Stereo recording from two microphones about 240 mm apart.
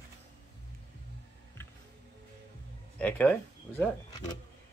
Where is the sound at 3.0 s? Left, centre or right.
Centre.